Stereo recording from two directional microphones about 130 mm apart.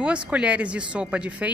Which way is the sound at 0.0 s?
10° right (ahead or behind).